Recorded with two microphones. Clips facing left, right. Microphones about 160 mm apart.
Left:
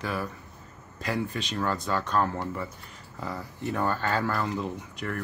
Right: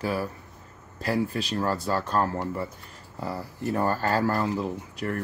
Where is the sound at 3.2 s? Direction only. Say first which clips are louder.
Right 2 dB; 10° right (ahead or behind).